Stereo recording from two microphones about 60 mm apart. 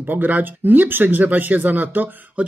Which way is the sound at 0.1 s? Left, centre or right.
Right.